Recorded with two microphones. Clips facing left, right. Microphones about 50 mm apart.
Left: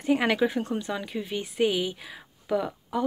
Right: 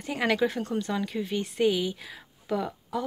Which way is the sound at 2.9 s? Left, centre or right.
Left.